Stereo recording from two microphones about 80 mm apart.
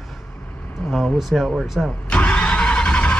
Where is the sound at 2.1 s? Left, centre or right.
Centre.